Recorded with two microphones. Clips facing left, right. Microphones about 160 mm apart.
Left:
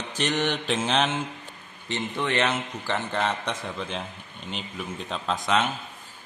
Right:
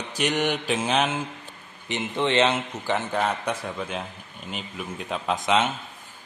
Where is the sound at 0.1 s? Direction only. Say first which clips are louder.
Right 2 dB; 10° right (ahead or behind).